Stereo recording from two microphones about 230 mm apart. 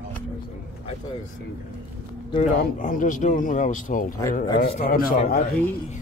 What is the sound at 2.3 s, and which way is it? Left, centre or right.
Speech, left.